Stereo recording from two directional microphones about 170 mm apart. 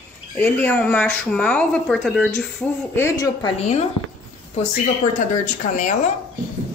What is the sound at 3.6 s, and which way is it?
Speech, 40° left (ahead or behind).